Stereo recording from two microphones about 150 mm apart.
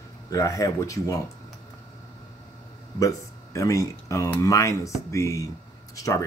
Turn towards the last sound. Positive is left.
turn(degrees=20)  # may be behind; listen again after turning